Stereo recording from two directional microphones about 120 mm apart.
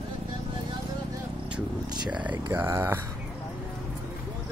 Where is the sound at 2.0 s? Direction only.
10° right (ahead or behind).